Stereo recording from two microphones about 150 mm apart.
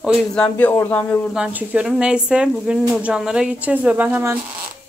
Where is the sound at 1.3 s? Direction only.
10° right (ahead or behind).